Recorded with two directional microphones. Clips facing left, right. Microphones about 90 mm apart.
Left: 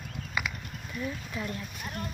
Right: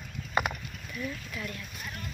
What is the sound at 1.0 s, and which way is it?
Speech, 20° left (ahead or behind).